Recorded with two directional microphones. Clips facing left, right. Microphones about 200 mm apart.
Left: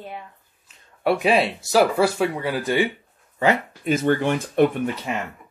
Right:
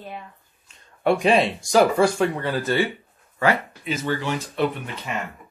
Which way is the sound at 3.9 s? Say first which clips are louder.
Left 6 dB; 55° left (ahead or behind).